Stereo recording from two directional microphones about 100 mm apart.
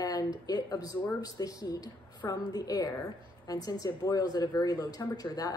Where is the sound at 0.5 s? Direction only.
40° left (ahead or behind).